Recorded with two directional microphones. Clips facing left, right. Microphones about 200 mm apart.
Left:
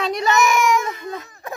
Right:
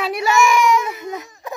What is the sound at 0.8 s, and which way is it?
Baby cry, 10° right (ahead or behind).